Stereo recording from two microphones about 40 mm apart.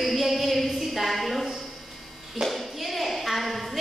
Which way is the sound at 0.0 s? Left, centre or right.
Centre.